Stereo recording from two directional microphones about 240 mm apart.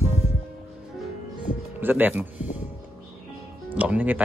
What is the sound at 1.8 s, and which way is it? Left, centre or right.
Speech, centre.